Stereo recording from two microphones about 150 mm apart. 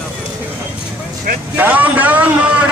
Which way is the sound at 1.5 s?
10° right (ahead or behind).